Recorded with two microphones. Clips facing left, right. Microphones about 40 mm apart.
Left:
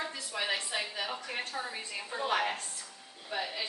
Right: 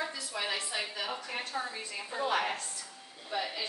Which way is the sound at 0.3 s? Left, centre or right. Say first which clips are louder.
Left 3 dB; centre.